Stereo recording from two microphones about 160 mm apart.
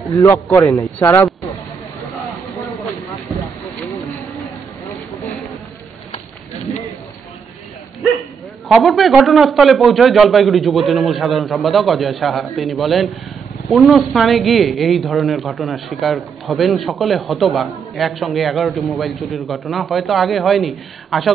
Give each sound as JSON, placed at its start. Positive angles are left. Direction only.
{"t": 0.1, "sound": "speech", "side_deg": 15}
{"t": 0.5, "sound": "speech", "side_deg": 0}
{"t": 0.9, "sound": "speech", "side_deg": 10}
{"t": 8.0, "sound": "speech", "side_deg": 0}